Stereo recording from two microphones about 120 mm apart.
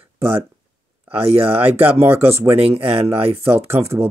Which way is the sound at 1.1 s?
55° right (ahead or behind).